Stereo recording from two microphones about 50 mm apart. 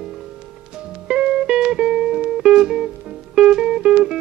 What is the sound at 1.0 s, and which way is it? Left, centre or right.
Music, centre.